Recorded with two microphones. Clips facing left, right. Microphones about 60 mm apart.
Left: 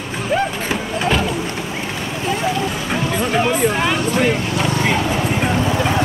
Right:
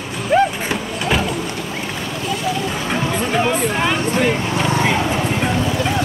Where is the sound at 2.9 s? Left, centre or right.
Centre.